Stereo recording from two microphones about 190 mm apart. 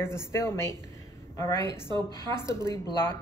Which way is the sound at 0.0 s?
15° left (ahead or behind).